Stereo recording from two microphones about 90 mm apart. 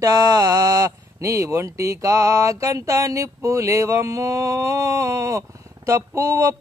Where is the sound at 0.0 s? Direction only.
40° right (ahead or behind).